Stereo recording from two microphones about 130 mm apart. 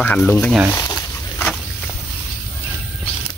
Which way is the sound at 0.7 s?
20° left (ahead or behind).